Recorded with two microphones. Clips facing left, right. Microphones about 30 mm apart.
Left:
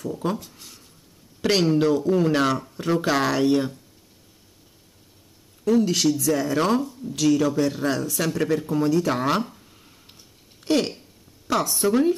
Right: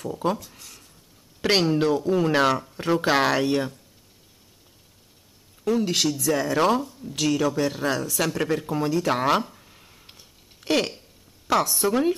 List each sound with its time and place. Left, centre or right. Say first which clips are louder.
0.0 s speech: right 1 dB; centre
0.6 s a sound: even; centre
1.4 s speech: left 1 dB; centre
5.6 s speech: left 3 dB; centre
7.5 s speech: left 1 dB; right
8.0 s speech: even; centre
8.4 s speech: left 2 dB; centre
9.6 s a sound: even; centre
11.7 s speech: left 2 dB; centre